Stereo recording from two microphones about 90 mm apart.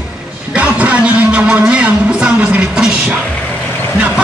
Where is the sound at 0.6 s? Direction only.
15° right (ahead or behind).